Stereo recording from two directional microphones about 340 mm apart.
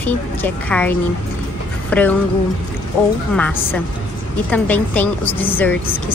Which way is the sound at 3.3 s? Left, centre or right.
Centre.